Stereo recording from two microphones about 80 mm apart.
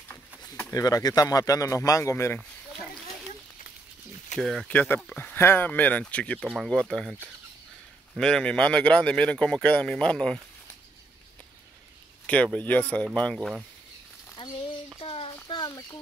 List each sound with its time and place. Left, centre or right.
0.7 s speech: left
4.4 s speech: centre
4.6 s speech: left
8.2 s speech: centre
12.5 s speech: centre
13.3 s speech: centre
14.4 s frying: left
15.4 s a sound: left